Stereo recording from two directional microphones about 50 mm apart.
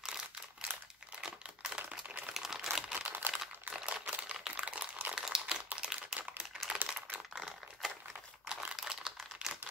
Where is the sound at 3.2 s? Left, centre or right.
Right.